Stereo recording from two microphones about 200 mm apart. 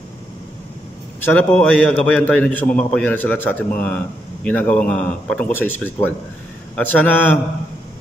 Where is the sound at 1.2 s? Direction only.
10° left (ahead or behind).